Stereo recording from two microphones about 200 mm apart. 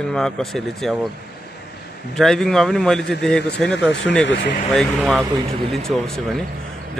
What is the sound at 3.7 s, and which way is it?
Speech, 60° left (ahead or behind).